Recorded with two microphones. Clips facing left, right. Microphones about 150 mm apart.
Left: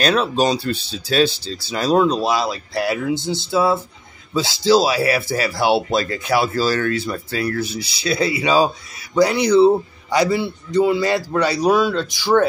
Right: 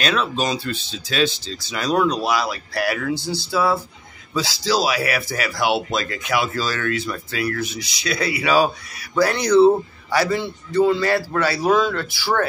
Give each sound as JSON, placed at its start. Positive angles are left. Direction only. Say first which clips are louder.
{"t": 0.0, "sound": "a man's voice", "louder": "left 5 dB", "side_deg": 35}